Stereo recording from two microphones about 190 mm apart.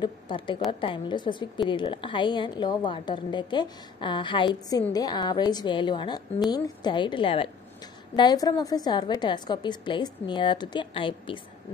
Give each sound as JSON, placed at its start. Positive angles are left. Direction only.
{"t": 0.0, "sound": "a woman's voice", "side_deg": 25}